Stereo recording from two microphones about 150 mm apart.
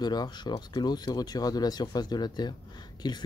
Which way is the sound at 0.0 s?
30° left (ahead or behind).